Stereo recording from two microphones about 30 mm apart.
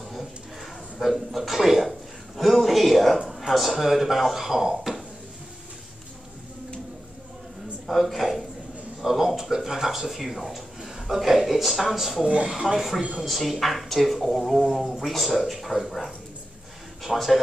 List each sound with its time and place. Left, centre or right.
1.0 s speech: centre
1.5 s a sound: centre
3.3 s speech: centre
8.0 s speech: centre
17.0 s a man's voice: centre